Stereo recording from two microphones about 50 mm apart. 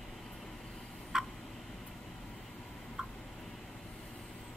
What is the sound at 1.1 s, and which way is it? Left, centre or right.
Tick-tock, centre.